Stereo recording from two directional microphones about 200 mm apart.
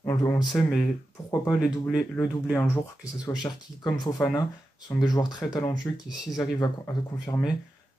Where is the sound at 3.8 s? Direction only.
20° left (ahead or behind).